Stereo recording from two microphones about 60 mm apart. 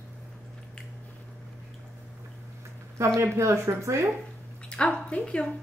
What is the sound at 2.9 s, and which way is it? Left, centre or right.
Speech, right.